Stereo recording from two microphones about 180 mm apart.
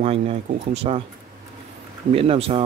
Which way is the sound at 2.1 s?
30° right (ahead or behind).